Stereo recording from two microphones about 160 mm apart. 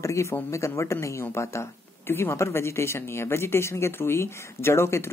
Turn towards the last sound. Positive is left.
turn(degrees=15)  # may be behind; listen again after turning